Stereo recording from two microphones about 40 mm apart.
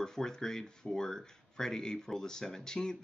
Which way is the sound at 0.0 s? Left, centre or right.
Centre.